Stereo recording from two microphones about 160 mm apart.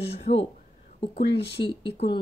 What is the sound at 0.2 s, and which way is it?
Speech, 40° left (ahead or behind).